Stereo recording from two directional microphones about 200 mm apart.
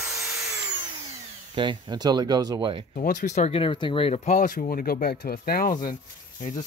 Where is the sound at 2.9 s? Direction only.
40° left (ahead or behind).